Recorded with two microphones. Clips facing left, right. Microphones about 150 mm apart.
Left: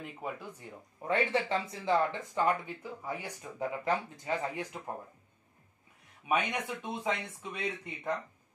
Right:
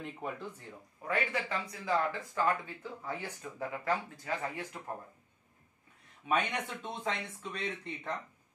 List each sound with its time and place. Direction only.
0.0 s speech: 5° left (ahead or behind)
1.0 s speech: 25° left (ahead or behind)
6.2 s speech: 10° left (ahead or behind)